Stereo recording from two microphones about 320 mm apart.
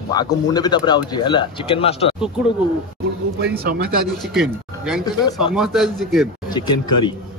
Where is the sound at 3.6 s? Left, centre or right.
Right.